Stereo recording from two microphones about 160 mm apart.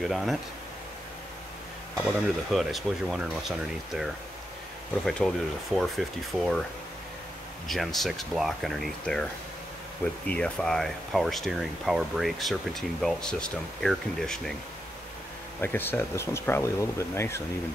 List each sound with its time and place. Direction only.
0.0 s speech: centre (ahead or behind)
2.5 s speech: centre (ahead or behind)
7.6 s speech: centre (ahead or behind)
10.2 s speech: 5° left (ahead or behind)
15.6 s speech: 15° left (ahead or behind)